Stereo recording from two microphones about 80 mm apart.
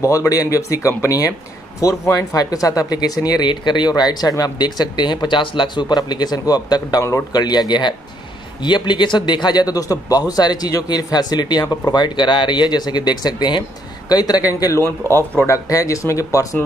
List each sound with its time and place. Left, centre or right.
0.0 s speech: left
14.8 s speech: left